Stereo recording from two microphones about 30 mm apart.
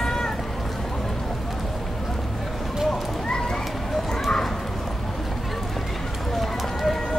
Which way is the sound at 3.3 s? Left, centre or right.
Left.